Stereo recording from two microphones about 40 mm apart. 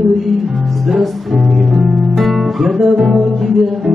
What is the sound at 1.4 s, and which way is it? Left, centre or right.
Music, centre.